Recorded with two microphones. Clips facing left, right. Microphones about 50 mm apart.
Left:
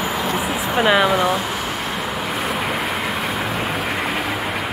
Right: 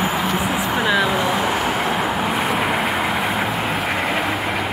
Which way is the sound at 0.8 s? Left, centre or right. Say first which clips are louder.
Left 4 dB; left.